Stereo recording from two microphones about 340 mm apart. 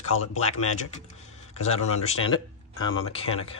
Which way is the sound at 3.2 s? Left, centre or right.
Left.